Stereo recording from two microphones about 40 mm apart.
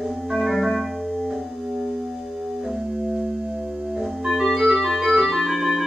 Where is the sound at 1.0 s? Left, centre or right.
Right.